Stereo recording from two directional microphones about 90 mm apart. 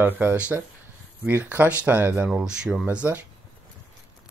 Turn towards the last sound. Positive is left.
turn(degrees=-15)  # may be behind; listen again after turning